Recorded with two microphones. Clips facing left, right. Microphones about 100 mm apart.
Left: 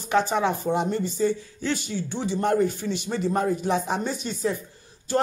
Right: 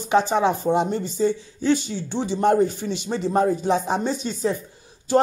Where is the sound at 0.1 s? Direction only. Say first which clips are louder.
Right 3 dB; 20° right (ahead or behind).